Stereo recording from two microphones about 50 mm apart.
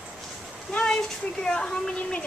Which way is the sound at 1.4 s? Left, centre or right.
Centre.